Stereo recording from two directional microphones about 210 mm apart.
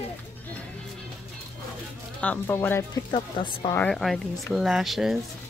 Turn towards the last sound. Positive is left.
turn(degrees=0)  # may be behind; listen again after turning